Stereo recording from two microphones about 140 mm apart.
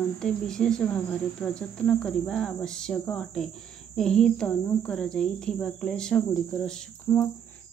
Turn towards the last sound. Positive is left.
turn(degrees=20)  # may be behind; listen again after turning